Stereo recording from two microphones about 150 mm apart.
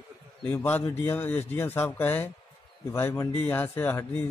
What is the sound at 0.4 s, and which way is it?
A man's voice, 10° left (ahead or behind).